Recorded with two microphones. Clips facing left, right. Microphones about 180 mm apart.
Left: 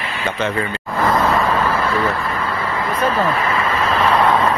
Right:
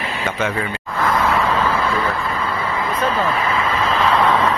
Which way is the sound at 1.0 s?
25° left (ahead or behind).